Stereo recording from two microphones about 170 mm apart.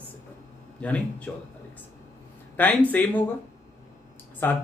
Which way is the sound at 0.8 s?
10° left (ahead or behind).